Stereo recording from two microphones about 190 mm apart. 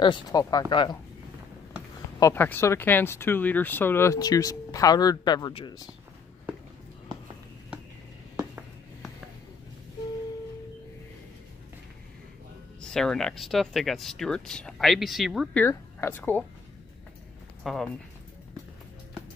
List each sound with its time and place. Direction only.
0.0 s speech: 20° left (ahead or behind)
2.1 s speech: 15° left (ahead or behind)
8.4 s a sound: 10° right (ahead or behind)
12.8 s speech: 5° left (ahead or behind)
15.6 s speech: 10° left (ahead or behind)
17.6 s speech: centre (ahead or behind)